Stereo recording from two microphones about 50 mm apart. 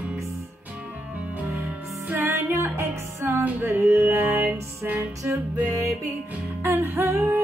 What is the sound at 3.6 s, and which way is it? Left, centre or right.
Music, right.